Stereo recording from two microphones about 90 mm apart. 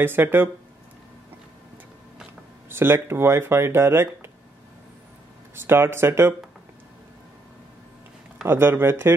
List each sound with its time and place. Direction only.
0.0 s speech: 25° right (ahead or behind)
2.7 s speech: 25° right (ahead or behind)
5.7 s speech: 25° right (ahead or behind)
8.5 s speech: 25° right (ahead or behind)